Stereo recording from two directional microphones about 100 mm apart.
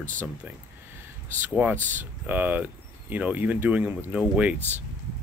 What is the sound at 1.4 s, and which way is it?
Speech, 15° right (ahead or behind).